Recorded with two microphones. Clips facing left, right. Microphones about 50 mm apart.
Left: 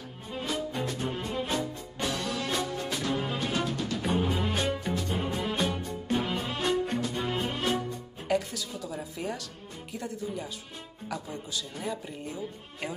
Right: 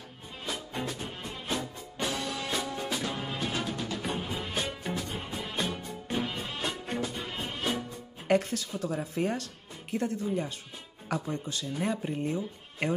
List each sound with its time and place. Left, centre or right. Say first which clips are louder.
0.3 s music: left 5 dB; centre
8.3 s music: right 3 dB; right
9.9 s speech: right 5 dB; right